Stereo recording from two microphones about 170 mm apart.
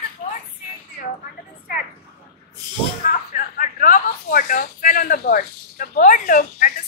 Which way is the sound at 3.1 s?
50° left (ahead or behind).